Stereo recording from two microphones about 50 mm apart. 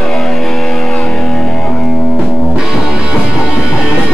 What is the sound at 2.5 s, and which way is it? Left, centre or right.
Music, centre.